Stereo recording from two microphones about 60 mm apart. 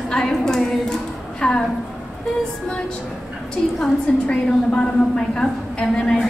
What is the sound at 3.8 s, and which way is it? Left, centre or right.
A woman's voice, centre.